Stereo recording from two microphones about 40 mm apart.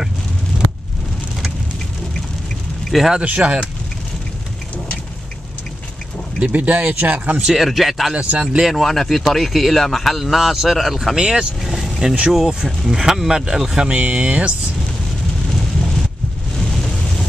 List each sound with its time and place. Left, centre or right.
2.9 s a man's voice: centre
3.3 s speech: right
6.4 s speech: right
7.5 s a man's voice: centre
8.1 s speech: right
8.7 s a man's voice: centre
11.1 s speech: centre
13.8 s speech: right
16.5 s vehicle: centre